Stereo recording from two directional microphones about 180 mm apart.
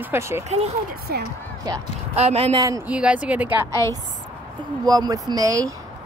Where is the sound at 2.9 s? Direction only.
5° right (ahead or behind).